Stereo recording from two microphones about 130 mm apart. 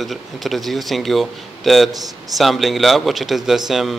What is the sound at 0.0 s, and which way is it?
A man's voice, centre (ahead or behind).